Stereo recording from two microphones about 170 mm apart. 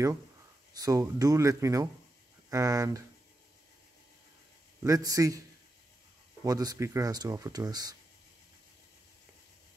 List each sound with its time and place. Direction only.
0.7 s speech: 20° right (ahead or behind)
4.8 s speech: 20° right (ahead or behind)
6.4 s speech: 20° right (ahead or behind)